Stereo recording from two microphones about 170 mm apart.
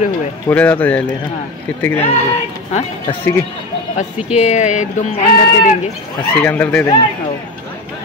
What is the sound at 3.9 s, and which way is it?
Speech, 40° left (ahead or behind).